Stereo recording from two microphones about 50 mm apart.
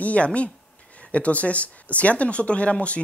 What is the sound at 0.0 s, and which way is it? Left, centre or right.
Speech, left.